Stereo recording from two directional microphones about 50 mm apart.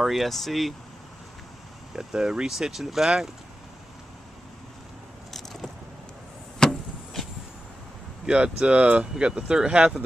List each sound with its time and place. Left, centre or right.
0.0 s speech: centre
2.0 s speech: centre
5.3 s vehicle: centre
6.6 s a sound: centre
8.3 s speech: right